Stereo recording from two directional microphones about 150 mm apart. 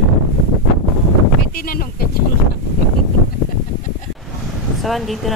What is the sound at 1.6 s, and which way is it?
Speech, 80° left.